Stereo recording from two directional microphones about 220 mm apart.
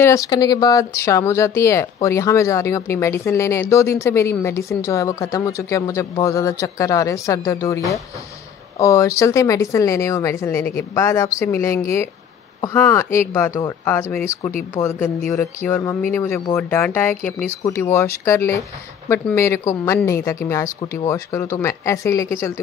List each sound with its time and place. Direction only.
0.0 s a woman's voice: 15° left (ahead or behind)